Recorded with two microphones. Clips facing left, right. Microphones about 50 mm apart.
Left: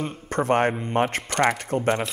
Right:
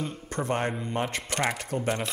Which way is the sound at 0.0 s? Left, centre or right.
Left.